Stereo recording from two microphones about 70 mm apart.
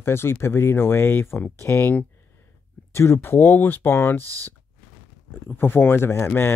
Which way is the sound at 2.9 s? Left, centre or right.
Left.